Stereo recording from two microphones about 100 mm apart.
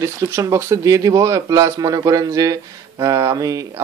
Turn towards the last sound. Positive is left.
turn(degrees=-35)  # may be behind; listen again after turning